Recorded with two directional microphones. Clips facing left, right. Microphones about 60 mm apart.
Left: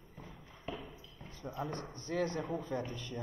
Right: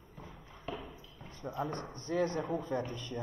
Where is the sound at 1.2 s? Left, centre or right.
Right.